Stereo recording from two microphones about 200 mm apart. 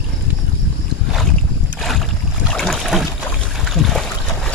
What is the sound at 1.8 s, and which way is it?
Boat, centre (ahead or behind).